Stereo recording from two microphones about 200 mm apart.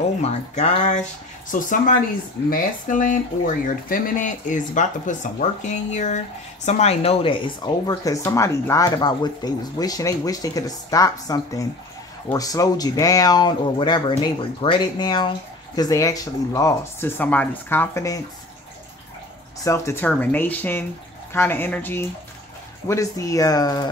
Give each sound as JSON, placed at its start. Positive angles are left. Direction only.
{"t": 0.2, "sound": "speech", "side_deg": 35}
{"t": 19.6, "sound": "speech", "side_deg": 15}